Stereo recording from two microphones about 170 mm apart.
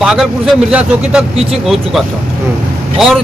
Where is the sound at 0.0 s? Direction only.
Centre (ahead or behind).